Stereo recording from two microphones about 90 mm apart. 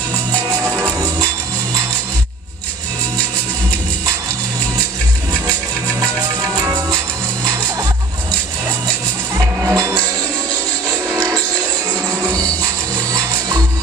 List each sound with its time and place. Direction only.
0.6 s music: 20° right (ahead or behind)
5.9 s music: 35° right (ahead or behind)
9.4 s music: 30° right (ahead or behind)